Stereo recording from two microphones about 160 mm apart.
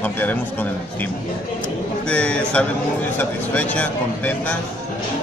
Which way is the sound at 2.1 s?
5° left (ahead or behind).